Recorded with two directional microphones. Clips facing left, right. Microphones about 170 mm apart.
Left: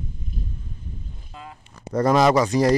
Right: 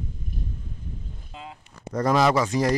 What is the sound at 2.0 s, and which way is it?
Speech, 45° left (ahead or behind).